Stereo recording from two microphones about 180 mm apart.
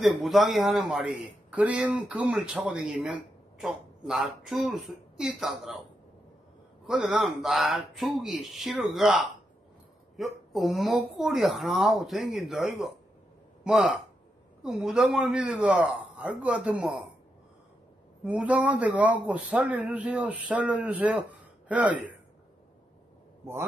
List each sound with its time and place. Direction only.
0.0 s a man's voice: centre (ahead or behind)
6.9 s a man's voice: centre (ahead or behind)
18.2 s a man's voice: 5° right (ahead or behind)